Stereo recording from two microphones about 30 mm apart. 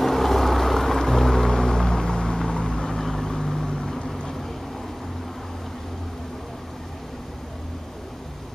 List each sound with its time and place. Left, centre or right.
0.0 s a sound: centre
1.5 s vehicle: centre
2.3 s vehicle: centre